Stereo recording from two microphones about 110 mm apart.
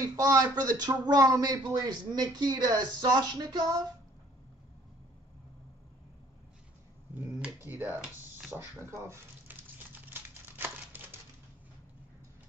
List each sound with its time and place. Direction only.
0.0 s speech: 30° right (ahead or behind)
7.2 s speech: 15° right (ahead or behind)
8.5 s a sound: 20° right (ahead or behind)